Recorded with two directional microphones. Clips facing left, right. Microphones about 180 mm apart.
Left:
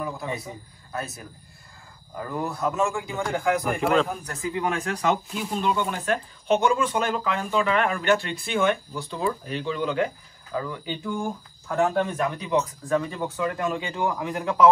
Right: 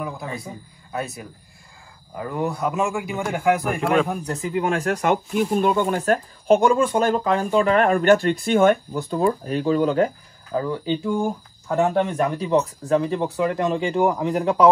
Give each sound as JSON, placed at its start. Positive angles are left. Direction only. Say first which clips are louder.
{"t": 0.0, "sound": "a man's voice", "louder": "right 1 dB", "side_deg": 0}
{"t": 4.1, "sound": "speech", "louder": "right 6 dB", "side_deg": -15}
{"t": 4.6, "sound": "speech", "louder": "right 6 dB", "side_deg": -40}
{"t": 11.1, "sound": "speech", "louder": "right 6 dB", "side_deg": -15}